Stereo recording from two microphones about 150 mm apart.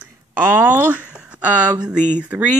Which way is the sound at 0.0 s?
15° right (ahead or behind).